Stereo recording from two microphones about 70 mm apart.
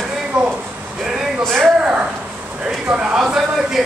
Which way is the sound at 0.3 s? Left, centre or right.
Centre.